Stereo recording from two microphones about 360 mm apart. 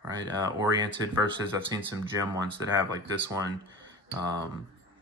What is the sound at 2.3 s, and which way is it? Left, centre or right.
Speech, centre.